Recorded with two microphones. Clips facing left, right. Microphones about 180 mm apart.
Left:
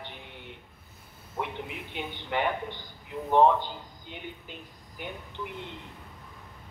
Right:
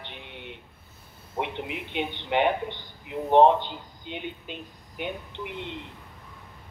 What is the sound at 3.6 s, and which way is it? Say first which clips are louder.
Speech: right 2 dB; 80° right.